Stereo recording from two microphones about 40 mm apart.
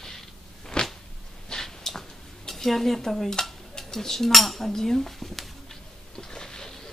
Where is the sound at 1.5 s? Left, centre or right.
Centre.